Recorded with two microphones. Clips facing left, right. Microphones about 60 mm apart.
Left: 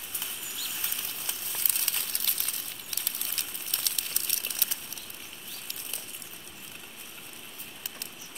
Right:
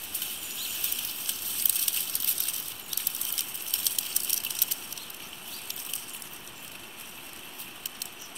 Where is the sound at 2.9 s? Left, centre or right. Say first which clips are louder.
Left 2 dB; left.